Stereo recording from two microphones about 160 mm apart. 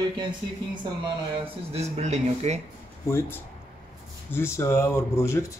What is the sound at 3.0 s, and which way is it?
Speech, 15° left (ahead or behind).